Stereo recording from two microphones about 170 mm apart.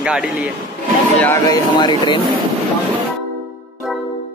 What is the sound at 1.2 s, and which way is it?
Speech, 15° left (ahead or behind).